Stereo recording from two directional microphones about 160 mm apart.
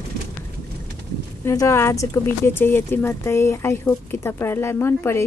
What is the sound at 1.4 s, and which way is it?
Speech, 20° left (ahead or behind).